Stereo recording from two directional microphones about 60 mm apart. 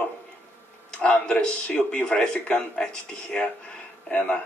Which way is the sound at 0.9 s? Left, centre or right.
Centre.